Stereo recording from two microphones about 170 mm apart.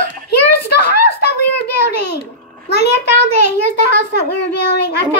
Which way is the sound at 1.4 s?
80° left.